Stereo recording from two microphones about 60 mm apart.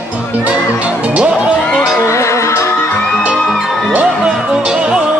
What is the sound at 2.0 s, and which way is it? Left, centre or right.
Music, left.